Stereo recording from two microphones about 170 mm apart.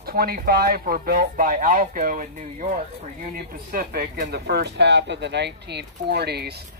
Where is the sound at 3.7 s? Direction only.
60° right (ahead or behind).